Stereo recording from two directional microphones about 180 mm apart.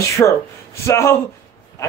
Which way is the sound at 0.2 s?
15° left (ahead or behind).